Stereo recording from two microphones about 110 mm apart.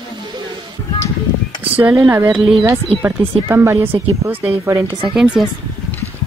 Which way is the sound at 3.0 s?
25° right (ahead or behind).